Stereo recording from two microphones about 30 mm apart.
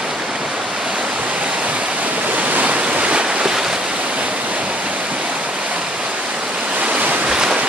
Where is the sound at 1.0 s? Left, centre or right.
Right.